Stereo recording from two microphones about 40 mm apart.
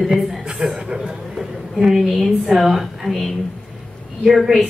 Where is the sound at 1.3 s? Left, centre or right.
Centre.